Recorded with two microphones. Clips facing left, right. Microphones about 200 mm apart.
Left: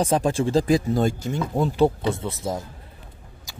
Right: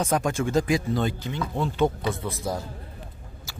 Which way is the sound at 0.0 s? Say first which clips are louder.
Left 3 dB; 30° left (ahead or behind).